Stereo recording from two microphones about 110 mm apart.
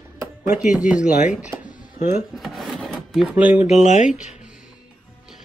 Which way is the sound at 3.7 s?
90° left.